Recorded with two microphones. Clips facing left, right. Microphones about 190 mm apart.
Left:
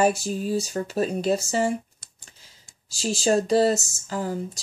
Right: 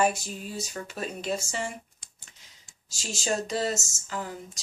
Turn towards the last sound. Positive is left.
turn(degrees=35)  # may be behind; listen again after turning